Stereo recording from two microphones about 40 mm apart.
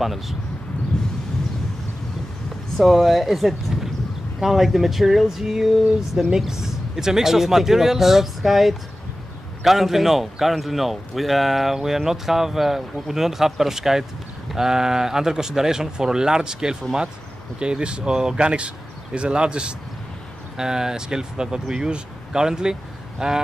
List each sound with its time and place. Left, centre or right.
0.0 s speech: centre
2.8 s speech: centre